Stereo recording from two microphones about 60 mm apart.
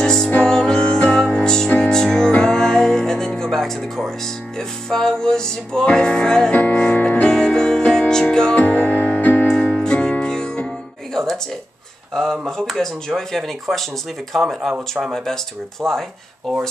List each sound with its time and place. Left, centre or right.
0.0 s music: centre; by 9.5 s left
9.8 s music: centre
12.1 s speech: centre